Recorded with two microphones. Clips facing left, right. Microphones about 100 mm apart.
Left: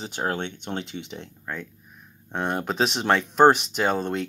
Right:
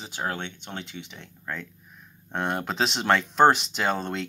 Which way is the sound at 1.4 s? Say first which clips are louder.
Right 3 dB; 15° left (ahead or behind).